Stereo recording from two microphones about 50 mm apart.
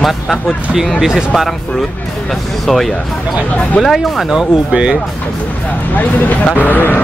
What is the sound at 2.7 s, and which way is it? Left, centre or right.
Speech, centre.